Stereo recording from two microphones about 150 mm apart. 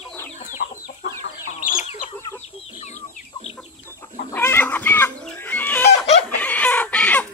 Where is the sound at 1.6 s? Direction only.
65° left (ahead or behind).